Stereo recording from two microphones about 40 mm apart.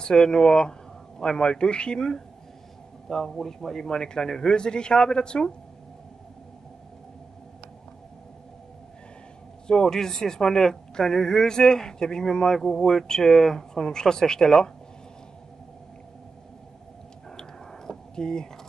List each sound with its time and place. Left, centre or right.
0.0 s a man's voice: centre
9.7 s speech: centre
17.4 s a sound: centre